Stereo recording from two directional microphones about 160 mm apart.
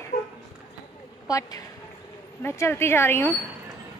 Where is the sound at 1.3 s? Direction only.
25° left (ahead or behind).